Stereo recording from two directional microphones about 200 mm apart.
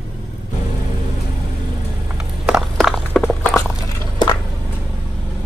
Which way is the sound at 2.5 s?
Centre (ahead or behind).